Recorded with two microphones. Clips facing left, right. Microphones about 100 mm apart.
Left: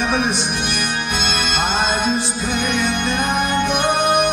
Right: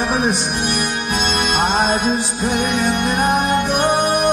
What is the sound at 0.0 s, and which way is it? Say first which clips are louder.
Music: right 1 dB; 40° right (ahead or behind).